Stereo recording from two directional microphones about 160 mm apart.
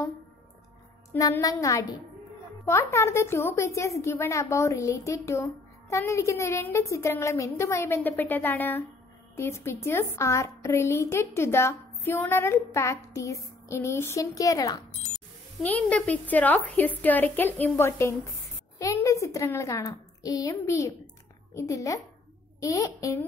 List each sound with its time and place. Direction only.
1.1 s a woman's voice: 20° left (ahead or behind)
15.6 s a woman's voice: 10° left (ahead or behind)